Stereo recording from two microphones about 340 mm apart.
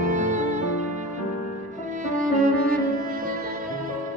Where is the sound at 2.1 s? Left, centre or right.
Right.